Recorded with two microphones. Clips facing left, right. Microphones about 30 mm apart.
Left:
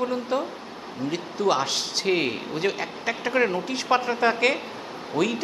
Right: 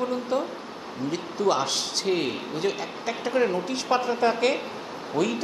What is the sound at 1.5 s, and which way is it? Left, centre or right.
A man's voice, centre.